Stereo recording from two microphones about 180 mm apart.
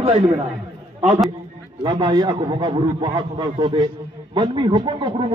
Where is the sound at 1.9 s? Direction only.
25° right (ahead or behind).